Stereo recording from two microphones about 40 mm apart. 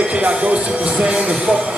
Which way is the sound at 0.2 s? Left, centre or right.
Right.